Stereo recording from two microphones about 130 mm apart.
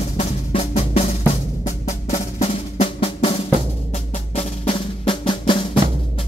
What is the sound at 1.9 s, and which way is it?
Music, 65° left (ahead or behind).